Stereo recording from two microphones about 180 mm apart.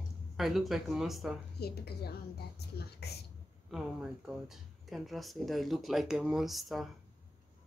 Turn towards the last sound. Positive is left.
turn(degrees=0)  # may be behind; listen again after turning